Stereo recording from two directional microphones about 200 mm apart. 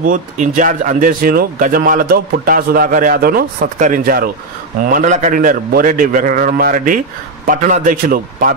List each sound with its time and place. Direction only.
0.0 s speech: 40° right (ahead or behind)